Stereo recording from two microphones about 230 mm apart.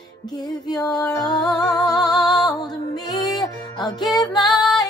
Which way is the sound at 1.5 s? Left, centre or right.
Centre.